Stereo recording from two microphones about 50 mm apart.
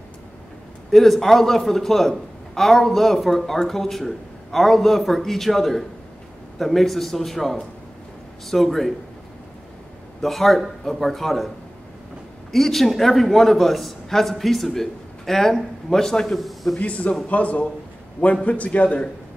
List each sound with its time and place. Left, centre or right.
0.9 s a man's voice: centre
10.2 s a man's voice: centre
12.5 s a man's voice: centre
16.7 s a man's voice: left